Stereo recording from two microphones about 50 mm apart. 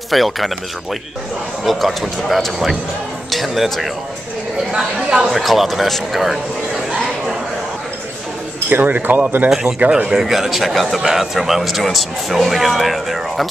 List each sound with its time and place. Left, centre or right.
0.1 s speech: centre
1.6 s speech: centre
4.7 s speech: centre
5.3 s speech: centre
8.6 s speech: right
9.5 s speech: centre